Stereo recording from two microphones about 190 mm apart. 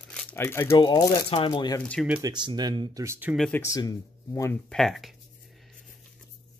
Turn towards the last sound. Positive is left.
turn(degrees=0)  # may be behind; listen again after turning